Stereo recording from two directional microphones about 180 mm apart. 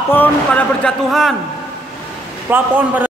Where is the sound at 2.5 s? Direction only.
10° right (ahead or behind).